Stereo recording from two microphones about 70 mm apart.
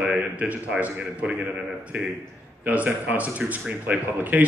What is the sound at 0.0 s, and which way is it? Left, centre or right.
A man's voice, centre.